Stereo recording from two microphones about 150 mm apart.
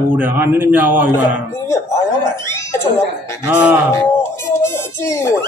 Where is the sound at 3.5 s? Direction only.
10° right (ahead or behind).